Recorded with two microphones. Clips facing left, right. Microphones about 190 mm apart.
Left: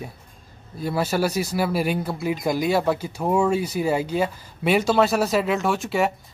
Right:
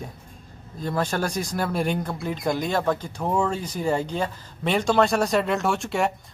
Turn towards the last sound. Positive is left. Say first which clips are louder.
# left 2 dB
turn(degrees=0)  # may be behind; listen again after turning